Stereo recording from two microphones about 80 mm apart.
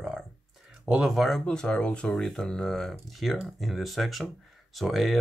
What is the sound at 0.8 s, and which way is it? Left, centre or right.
Speech, centre.